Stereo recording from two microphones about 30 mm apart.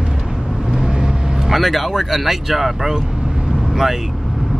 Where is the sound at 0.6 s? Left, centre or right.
Right.